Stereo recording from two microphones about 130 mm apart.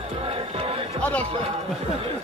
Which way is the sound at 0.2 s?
45° right (ahead or behind).